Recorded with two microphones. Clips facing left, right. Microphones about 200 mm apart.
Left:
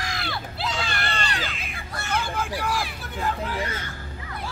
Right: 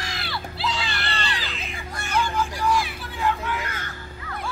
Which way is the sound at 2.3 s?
55° left (ahead or behind).